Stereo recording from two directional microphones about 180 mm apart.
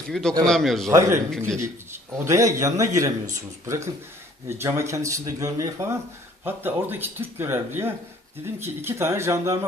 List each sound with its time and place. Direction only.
0.1 s a man's voice: centre (ahead or behind)
0.8 s speech: 15° right (ahead or behind)